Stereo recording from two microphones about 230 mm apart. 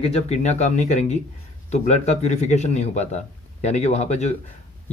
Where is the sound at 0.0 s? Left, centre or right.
Left.